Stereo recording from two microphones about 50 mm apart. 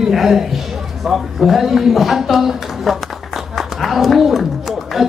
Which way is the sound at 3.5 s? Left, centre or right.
Centre.